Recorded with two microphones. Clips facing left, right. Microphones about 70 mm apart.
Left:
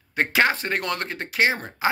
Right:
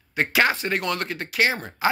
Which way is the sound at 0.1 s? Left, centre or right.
Left.